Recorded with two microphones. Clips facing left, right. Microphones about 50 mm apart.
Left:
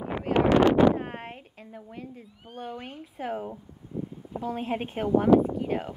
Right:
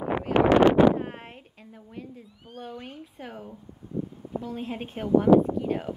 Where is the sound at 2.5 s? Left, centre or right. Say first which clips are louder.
Left 1 dB; centre.